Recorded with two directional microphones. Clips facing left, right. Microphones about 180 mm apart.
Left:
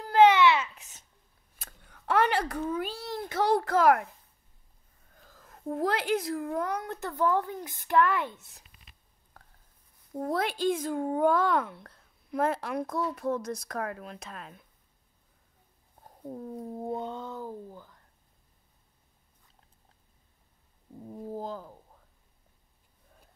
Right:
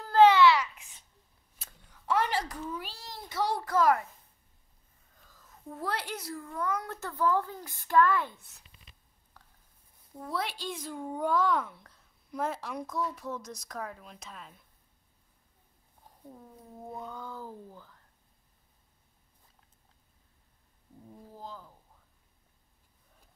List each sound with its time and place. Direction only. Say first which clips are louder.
0.0 s babbling: even; 15° left (ahead or behind)
0.7 s babbling: left 2 dB; 40° left (ahead or behind)
1.6 s a sound: left 4 dB; 55° left (ahead or behind)
5.1 s a sound: left 5 dB; 55° left (ahead or behind)
6.3 s a child's voice: left 5 dB; 60° left (ahead or behind)
6.8 s speech: left 2 dB; 15° left (ahead or behind)
10.1 s a child's voice: left 6 dB; 50° left (ahead or behind)
16.0 s speech: left 10 dB; 50° left (ahead or behind)
16.7 s speech: left 6 dB; 30° left (ahead or behind); by 17.9 s 15° left (ahead or behind)
21.4 s speech: left 5 dB; 50° left (ahead or behind)